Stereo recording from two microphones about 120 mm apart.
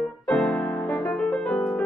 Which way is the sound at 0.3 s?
5° left (ahead or behind).